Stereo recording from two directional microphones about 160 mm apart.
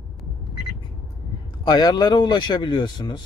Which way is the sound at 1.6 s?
25° left (ahead or behind).